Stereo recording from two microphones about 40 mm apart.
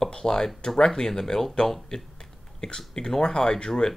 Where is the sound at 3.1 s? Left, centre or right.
Centre.